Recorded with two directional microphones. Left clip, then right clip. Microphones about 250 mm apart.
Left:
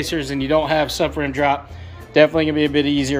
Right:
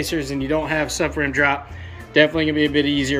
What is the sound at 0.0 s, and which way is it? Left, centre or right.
Speech, centre.